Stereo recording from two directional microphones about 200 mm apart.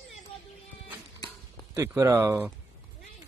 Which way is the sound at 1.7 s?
10° right (ahead or behind).